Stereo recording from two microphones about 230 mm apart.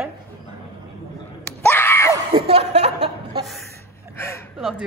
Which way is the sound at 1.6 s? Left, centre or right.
Centre.